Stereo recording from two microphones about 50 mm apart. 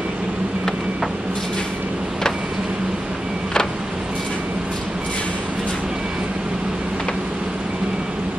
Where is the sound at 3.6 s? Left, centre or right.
Centre.